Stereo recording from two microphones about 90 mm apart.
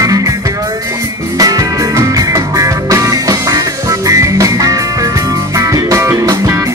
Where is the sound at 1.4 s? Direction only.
40° right (ahead or behind).